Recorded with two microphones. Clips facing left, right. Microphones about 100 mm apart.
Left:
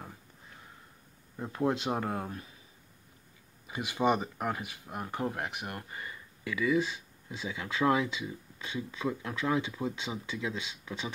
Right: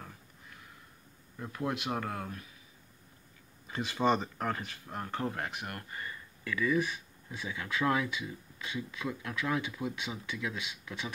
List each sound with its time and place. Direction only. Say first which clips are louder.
1.4 s speech: left 5 dB; 25° left (ahead or behind)
3.6 s speech: left 1 dB; 10° left (ahead or behind)